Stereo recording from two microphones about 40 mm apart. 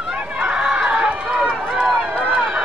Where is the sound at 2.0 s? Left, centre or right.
Right.